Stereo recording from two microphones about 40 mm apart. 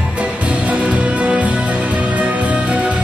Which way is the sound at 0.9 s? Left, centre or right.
Right.